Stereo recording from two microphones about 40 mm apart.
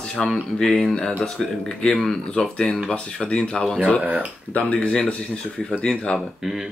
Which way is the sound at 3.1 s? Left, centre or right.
Left.